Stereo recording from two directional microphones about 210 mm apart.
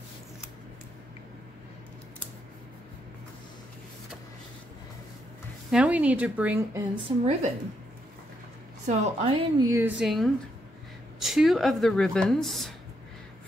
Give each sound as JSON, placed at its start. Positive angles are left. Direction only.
{"t": 5.7, "sound": "a woman's voice", "side_deg": -5}
{"t": 7.1, "sound": "a woman's voice", "side_deg": -25}
{"t": 8.8, "sound": "a woman's voice", "side_deg": -30}
{"t": 9.7, "sound": "speech", "side_deg": -10}